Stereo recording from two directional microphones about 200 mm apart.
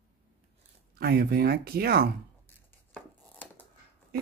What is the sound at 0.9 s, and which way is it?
Speech, 50° right (ahead or behind).